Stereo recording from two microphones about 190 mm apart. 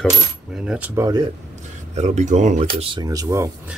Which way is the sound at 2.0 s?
40° right (ahead or behind).